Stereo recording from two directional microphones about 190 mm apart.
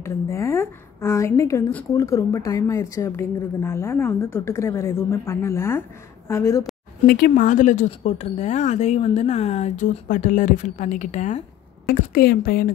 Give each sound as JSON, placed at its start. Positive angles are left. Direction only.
{"t": 0.0, "sound": "a woman's voice", "side_deg": 15}
{"t": 7.1, "sound": "speech", "side_deg": 50}
{"t": 11.9, "sound": "a woman's voice", "side_deg": 50}